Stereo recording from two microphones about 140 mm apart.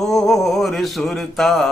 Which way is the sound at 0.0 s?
Centre (ahead or behind).